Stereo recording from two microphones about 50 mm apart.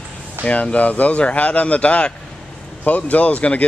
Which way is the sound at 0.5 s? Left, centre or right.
Left.